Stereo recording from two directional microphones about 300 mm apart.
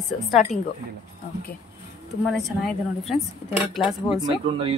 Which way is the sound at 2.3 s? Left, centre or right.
Centre.